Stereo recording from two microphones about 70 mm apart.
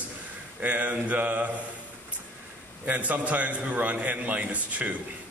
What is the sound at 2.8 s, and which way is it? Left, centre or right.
Speech, right.